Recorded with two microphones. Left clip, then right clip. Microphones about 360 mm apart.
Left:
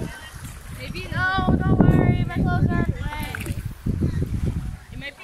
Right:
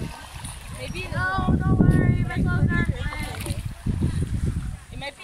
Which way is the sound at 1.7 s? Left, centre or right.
Left.